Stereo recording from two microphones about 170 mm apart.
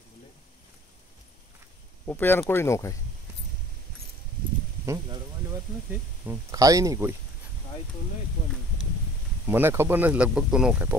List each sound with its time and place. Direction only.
2.0 s speech: 10° left (ahead or behind)
4.8 s speech: 20° right (ahead or behind)
9.5 s speech: 15° right (ahead or behind)